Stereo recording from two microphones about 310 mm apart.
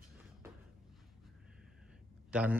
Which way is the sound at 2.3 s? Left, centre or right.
Centre.